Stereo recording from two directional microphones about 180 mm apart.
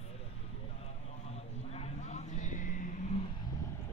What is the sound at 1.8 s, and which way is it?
Vehicle, 40° left (ahead or behind).